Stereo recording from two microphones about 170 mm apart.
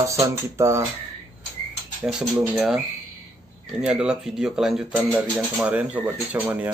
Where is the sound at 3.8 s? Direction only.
5° right (ahead or behind).